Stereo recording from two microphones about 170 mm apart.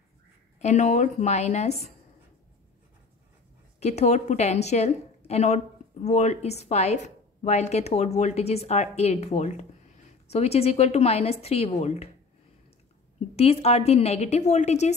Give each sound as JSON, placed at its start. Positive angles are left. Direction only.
{"t": 0.6, "sound": "a woman's voice", "side_deg": 45}
{"t": 3.8, "sound": "speech", "side_deg": 40}
{"t": 13.4, "sound": "speech", "side_deg": 40}